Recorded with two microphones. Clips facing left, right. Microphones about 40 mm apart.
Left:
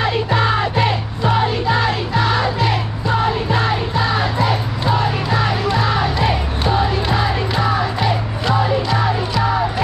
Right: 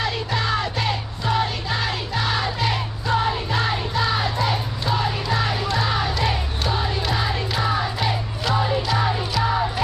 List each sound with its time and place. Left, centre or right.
0.0 s music: left